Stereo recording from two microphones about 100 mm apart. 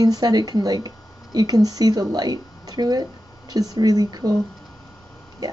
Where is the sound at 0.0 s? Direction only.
40° right (ahead or behind).